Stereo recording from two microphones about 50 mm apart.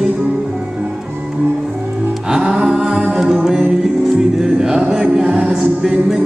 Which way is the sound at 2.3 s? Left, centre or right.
Centre.